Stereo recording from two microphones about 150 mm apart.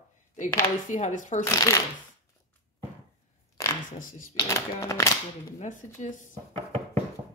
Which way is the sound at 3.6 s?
20° left (ahead or behind).